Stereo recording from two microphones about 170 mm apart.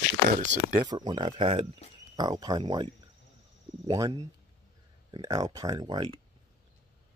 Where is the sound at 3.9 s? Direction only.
20° right (ahead or behind).